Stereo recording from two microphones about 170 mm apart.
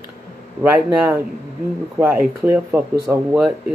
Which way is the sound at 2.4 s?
10° right (ahead or behind).